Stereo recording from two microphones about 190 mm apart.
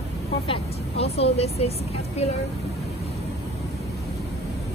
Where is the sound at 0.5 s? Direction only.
30° left (ahead or behind).